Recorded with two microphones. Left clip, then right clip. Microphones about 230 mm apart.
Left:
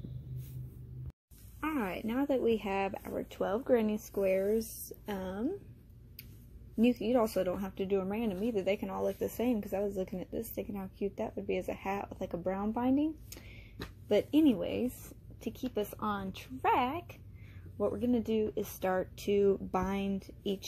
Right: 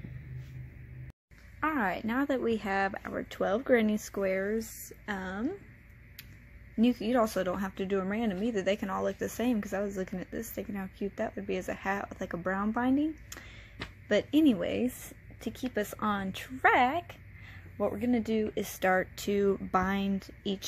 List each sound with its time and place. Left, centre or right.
1.6 s speech: right
4.4 s speech: centre
6.8 s speech: right